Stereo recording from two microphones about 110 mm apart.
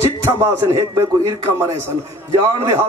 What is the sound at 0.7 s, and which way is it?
Speech, 30° right (ahead or behind).